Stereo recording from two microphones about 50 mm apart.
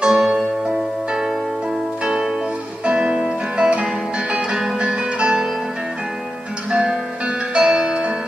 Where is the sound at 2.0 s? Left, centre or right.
Centre.